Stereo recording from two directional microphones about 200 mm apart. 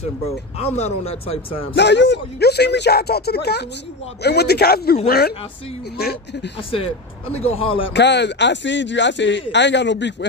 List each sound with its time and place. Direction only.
0.6 s speech: 35° left (ahead or behind)
1.8 s speech: 60° left (ahead or behind)
7.3 s speech: 30° left (ahead or behind)
7.9 s speech: 60° left (ahead or behind)